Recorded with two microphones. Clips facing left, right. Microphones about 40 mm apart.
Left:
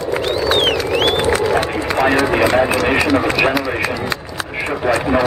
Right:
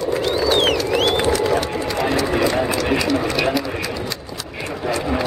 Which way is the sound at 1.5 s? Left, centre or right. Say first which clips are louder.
Left 3 dB; left.